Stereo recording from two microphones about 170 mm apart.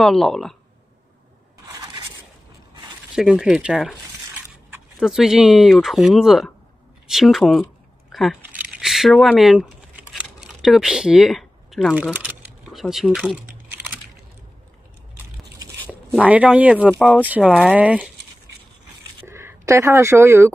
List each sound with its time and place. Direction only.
0.0 s speech: centre (ahead or behind)
3.2 s speech: 5° right (ahead or behind)
4.9 s speech: centre (ahead or behind)
8.1 s a sound: centre (ahead or behind)
15.9 s speech: 10° right (ahead or behind)
19.2 s speech: 15° right (ahead or behind)